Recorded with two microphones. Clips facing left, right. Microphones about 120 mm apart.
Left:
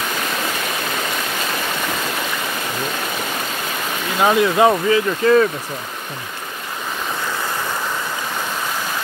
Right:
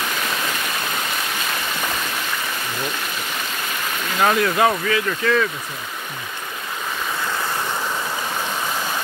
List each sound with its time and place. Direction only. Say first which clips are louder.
4.2 s speech: left 3 dB; 20° left (ahead or behind)